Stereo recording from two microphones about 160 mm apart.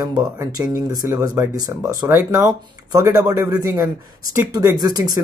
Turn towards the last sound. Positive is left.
turn(degrees=-25)  # may be behind; listen again after turning